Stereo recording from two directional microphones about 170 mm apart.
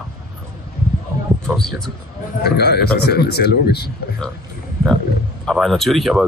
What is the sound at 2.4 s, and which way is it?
Speech, 70° left (ahead or behind).